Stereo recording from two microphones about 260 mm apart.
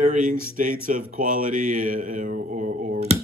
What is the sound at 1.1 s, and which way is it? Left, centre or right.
Mantra, right.